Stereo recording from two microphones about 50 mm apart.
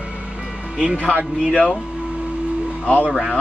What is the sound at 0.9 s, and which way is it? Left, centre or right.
Speech, left.